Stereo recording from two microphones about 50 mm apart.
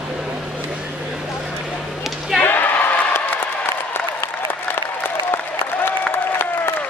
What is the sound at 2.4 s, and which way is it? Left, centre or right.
Applause, left.